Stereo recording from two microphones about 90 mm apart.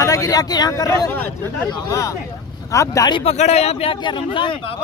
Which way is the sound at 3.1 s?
70° left (ahead or behind).